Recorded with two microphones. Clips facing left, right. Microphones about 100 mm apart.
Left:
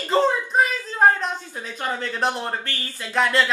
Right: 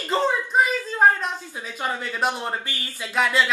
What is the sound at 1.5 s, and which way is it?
Speech, 10° right (ahead or behind).